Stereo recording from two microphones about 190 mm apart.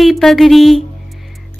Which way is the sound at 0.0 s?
Centre (ahead or behind).